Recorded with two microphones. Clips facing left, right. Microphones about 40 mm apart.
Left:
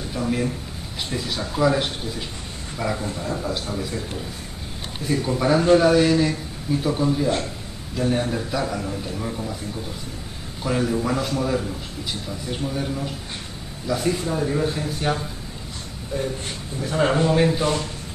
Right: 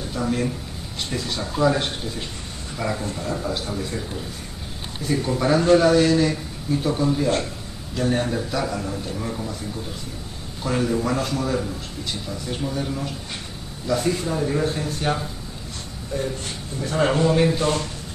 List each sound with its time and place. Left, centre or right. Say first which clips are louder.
1.1 s a man's voice: even; centre
5.1 s a man's voice: even; centre
10.6 s a man's voice: even; centre
16.1 s a sound: even; centre
16.8 s a man's voice: even; centre